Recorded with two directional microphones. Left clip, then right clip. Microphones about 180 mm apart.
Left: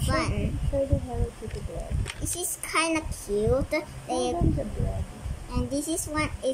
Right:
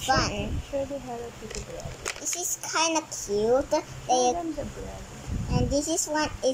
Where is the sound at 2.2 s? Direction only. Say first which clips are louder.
Even; 25° left (ahead or behind).